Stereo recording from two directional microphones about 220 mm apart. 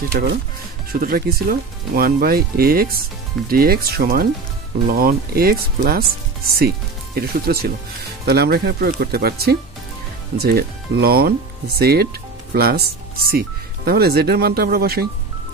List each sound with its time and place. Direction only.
0.9 s speech: 40° right (ahead or behind)